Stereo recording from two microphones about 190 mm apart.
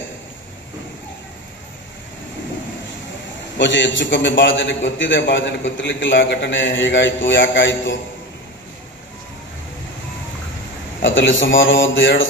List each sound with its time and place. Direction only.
3.5 s a man's voice: 70° left (ahead or behind)
11.0 s a man's voice: 80° left